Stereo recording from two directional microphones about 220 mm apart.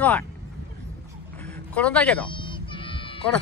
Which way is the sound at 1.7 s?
5° left (ahead or behind).